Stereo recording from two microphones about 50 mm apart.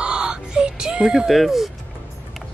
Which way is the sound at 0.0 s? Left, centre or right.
Centre.